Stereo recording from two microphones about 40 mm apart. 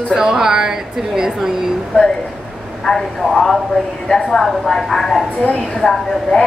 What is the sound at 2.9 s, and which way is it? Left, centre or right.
A woman's voice, centre.